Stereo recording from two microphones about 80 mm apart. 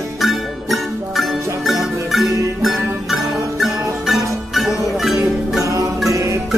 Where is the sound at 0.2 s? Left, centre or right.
Centre.